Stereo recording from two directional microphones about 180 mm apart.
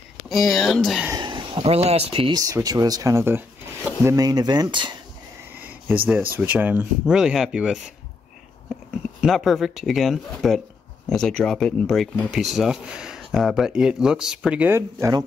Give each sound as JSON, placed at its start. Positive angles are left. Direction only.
{"t": 0.3, "sound": "speech", "side_deg": 0}
{"t": 1.1, "sound": "speech", "side_deg": -25}
{"t": 5.5, "sound": "speech", "side_deg": -10}
{"t": 9.2, "sound": "speech", "side_deg": 0}